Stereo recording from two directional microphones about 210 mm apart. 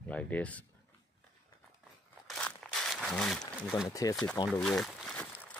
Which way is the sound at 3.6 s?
5° left (ahead or behind).